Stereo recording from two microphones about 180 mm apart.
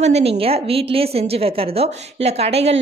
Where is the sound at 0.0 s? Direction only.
35° right (ahead or behind).